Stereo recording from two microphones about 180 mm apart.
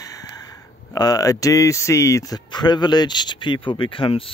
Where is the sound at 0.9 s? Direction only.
20° left (ahead or behind).